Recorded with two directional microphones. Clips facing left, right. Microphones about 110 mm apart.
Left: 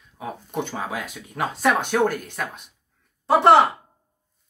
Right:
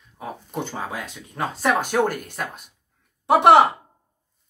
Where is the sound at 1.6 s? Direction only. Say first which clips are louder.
Even; 5° right (ahead or behind).